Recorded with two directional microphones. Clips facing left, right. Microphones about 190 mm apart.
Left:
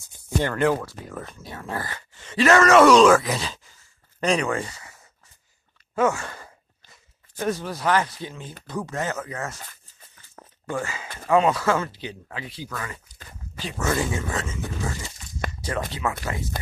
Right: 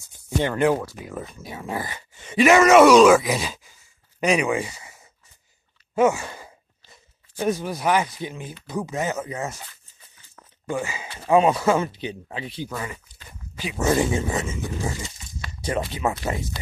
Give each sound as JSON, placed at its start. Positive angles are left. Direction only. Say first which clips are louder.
{"t": 0.4, "sound": "speech", "louder": "right 2 dB", "side_deg": -15}
{"t": 5.9, "sound": "sigh", "louder": "right 3 dB", "side_deg": -15}
{"t": 7.3, "sound": "speech", "louder": "right 2 dB", "side_deg": -15}
{"t": 10.7, "sound": "speech", "louder": "right 2 dB", "side_deg": -15}
{"t": 15.4, "sound": "a sound", "louder": "left 10 dB", "side_deg": 50}
{"t": 15.9, "sound": "speech", "louder": "right 3 dB", "side_deg": -20}